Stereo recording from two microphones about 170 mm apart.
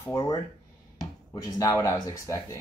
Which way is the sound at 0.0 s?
20° left (ahead or behind).